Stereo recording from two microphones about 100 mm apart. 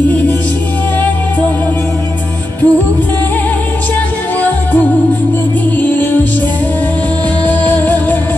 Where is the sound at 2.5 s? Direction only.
15° left (ahead or behind).